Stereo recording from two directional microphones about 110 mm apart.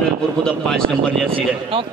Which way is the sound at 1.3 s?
55° right (ahead or behind).